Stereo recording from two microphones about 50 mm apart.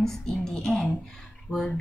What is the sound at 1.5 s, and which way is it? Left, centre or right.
Speech, centre.